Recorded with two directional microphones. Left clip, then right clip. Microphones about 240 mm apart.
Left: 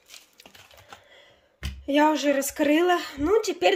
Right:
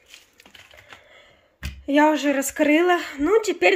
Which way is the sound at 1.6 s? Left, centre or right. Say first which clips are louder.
Right 3 dB; centre.